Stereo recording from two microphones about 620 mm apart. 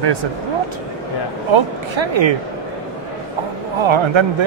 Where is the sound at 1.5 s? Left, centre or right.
Right.